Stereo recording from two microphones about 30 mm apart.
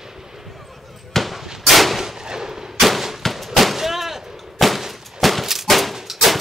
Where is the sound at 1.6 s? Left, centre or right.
Centre.